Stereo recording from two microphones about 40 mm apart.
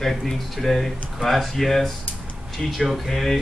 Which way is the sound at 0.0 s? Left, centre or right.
Centre.